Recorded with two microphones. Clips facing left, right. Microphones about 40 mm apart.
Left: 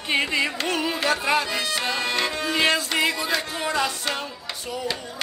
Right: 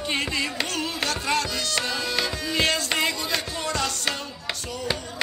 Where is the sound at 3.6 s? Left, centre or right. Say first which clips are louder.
Left 4 dB; centre.